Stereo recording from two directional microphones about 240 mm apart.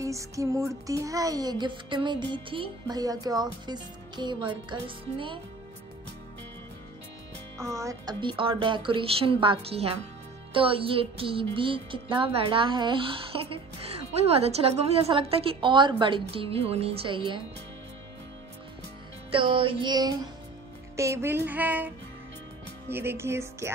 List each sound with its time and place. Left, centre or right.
0.0 s music: centre
7.5 s music: centre
19.3 s music: right